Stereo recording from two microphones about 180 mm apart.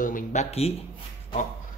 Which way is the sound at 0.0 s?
45° left (ahead or behind).